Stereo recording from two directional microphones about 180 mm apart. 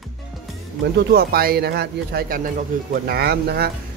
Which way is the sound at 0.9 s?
60° right (ahead or behind).